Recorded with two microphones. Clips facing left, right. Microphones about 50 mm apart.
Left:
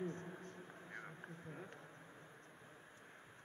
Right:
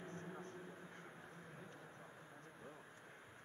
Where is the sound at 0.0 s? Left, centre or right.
Left.